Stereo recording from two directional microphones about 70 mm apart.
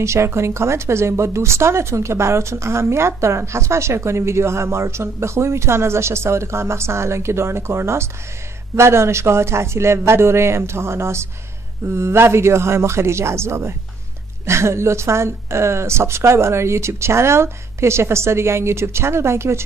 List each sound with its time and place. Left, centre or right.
0.0 s a woman's voice: right